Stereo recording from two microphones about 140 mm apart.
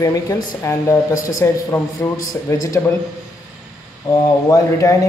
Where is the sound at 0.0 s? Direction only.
25° left (ahead or behind).